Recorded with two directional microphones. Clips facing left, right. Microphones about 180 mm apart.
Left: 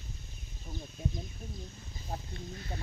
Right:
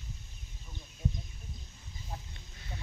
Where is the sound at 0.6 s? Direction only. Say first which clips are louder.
Left 1 dB; 35° left (ahead or behind).